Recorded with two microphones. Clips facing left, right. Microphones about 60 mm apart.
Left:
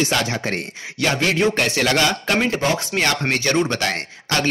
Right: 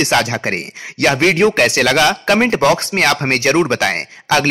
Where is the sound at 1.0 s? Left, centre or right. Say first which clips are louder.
Right 6 dB; right.